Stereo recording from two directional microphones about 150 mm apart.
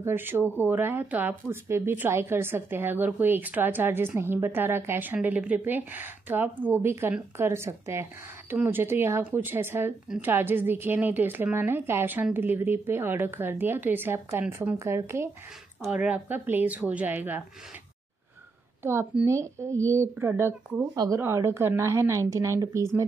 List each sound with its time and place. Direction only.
0.0 s speech: 15° right (ahead or behind)
15.8 s speech: 5° right (ahead or behind)
18.8 s a woman's voice: 15° right (ahead or behind)